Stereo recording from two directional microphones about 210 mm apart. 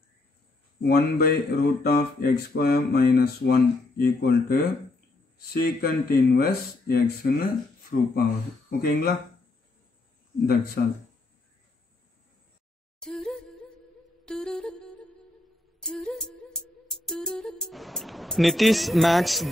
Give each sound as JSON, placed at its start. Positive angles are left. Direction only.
{"t": 0.8, "sound": "speech", "side_deg": 50}
{"t": 10.4, "sound": "speech", "side_deg": 50}
{"t": 13.0, "sound": "a sound", "side_deg": 0}
{"t": 14.2, "sound": "music", "side_deg": 0}